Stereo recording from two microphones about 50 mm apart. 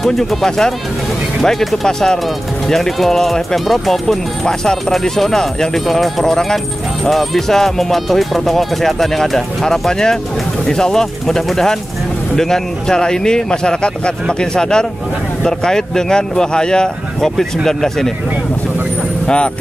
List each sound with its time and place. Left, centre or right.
0.0 s speech: centre
19.2 s speech: centre